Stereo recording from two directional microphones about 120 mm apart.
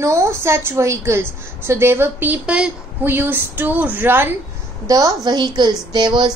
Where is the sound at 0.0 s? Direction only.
25° right (ahead or behind).